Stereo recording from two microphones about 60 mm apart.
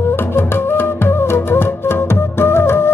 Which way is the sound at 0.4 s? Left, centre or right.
Left.